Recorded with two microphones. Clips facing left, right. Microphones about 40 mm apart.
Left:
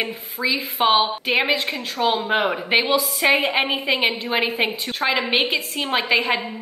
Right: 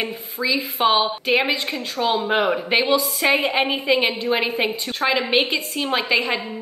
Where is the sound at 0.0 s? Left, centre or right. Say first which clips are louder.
Even; centre.